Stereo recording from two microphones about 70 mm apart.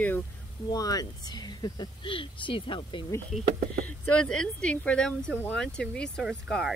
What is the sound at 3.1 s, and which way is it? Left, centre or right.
Speech, left.